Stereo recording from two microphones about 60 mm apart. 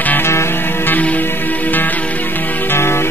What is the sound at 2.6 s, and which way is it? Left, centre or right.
Music, left.